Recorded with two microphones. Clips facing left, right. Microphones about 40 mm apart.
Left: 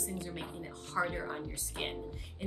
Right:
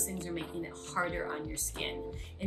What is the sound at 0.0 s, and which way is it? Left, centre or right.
Speech, right.